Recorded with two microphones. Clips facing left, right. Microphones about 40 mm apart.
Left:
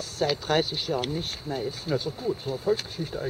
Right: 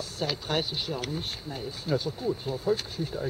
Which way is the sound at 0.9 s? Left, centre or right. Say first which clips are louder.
Left 6 dB; left.